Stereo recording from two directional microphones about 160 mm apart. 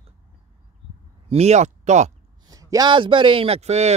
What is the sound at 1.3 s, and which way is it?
Speech, 40° right (ahead or behind).